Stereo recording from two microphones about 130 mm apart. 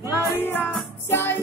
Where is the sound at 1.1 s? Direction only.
15° left (ahead or behind).